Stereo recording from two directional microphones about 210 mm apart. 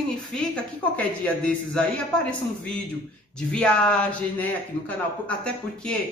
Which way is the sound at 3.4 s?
5° left (ahead or behind).